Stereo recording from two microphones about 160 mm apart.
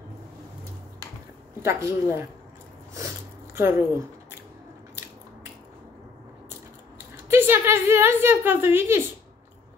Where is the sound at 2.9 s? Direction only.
15° right (ahead or behind).